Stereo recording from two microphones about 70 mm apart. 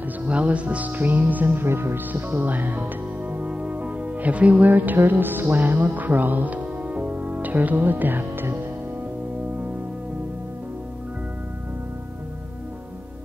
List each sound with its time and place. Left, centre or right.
0.2 s music: centre